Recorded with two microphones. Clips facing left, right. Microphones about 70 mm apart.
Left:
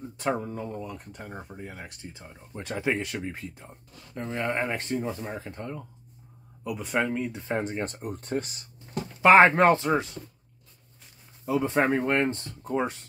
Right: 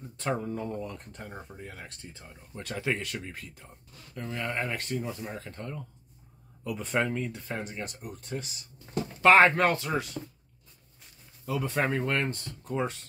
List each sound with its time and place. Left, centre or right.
0.2 s speech: centre
6.6 s speech: centre
7.6 s speech: left
9.2 s speech: left
11.4 s speech: left